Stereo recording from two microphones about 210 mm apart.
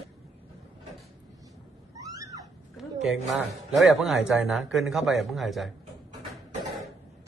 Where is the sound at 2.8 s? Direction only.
Centre (ahead or behind).